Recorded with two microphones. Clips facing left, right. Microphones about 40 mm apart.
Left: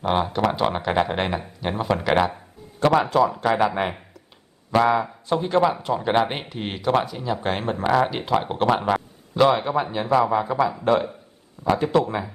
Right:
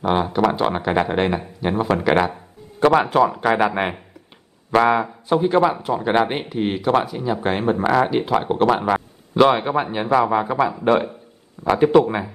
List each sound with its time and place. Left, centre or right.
0.0 s speech: centre
2.8 s speech: right
3.4 s speech: right
5.0 s speech: centre
9.3 s a man's voice: right
9.6 s speech: right